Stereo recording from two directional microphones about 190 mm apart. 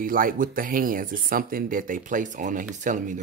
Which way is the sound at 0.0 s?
45° right (ahead or behind).